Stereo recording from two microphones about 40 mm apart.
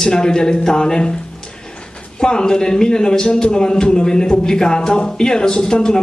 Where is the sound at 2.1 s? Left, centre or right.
Centre.